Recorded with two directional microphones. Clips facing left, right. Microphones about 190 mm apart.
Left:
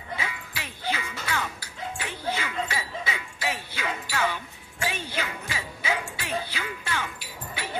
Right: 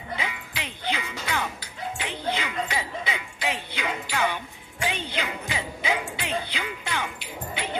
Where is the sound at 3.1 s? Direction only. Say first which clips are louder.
Right 2 dB; 15° right (ahead or behind).